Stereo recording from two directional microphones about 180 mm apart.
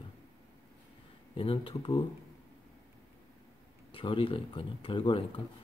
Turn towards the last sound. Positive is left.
turn(degrees=30)  # may be behind; listen again after turning